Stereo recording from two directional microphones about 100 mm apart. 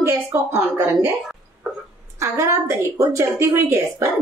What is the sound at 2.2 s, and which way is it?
A woman's voice, 30° right (ahead or behind).